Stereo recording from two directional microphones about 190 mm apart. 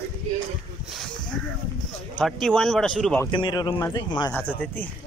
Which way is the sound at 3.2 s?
25° left (ahead or behind).